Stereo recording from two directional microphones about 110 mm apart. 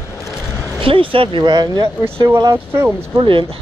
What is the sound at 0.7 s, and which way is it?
Speech, 55° right (ahead or behind).